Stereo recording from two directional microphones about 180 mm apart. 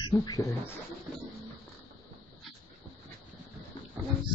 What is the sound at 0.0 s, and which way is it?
Speech, 25° left (ahead or behind).